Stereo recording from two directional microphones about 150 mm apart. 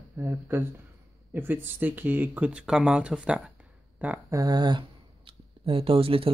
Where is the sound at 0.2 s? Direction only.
15° right (ahead or behind).